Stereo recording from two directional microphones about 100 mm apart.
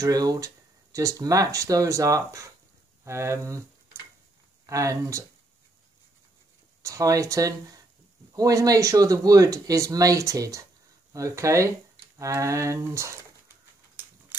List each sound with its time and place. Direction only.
0.0 s speech: 40° right (ahead or behind)
4.6 s speech: 30° right (ahead or behind)
6.8 s speech: 35° right (ahead or behind)